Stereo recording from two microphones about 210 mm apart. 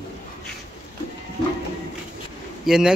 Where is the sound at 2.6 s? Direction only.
5° right (ahead or behind).